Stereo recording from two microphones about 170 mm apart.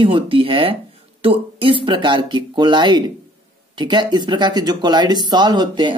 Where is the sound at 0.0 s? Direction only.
30° right (ahead or behind).